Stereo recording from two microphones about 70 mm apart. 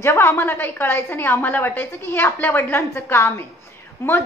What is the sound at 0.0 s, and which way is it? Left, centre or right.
A woman's voice, left.